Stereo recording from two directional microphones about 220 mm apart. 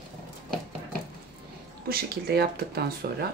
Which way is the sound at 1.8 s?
45° right (ahead or behind).